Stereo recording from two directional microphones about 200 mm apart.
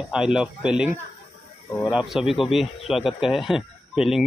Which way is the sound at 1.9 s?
5° right (ahead or behind).